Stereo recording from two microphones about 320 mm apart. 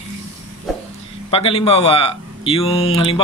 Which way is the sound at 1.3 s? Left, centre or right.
Centre.